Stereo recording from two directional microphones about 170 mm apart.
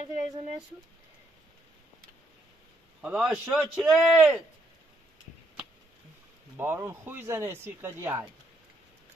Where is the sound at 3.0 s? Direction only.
5° right (ahead or behind).